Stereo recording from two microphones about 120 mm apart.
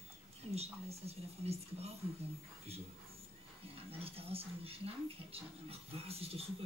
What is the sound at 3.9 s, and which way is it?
Speech, 55° right (ahead or behind).